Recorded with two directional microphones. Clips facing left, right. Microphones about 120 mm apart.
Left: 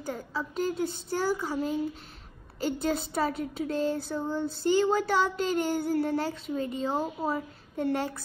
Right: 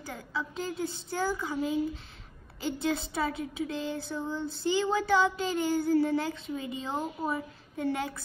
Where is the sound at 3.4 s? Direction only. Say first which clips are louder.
Left 4 dB; 45° left (ahead or behind).